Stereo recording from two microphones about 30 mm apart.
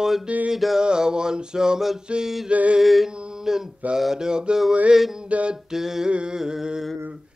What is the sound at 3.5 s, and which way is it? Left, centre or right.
Mantra, centre.